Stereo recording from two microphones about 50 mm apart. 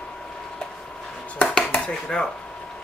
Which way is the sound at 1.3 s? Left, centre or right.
Left.